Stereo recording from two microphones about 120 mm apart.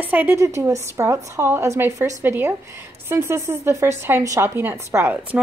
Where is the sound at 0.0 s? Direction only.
15° right (ahead or behind).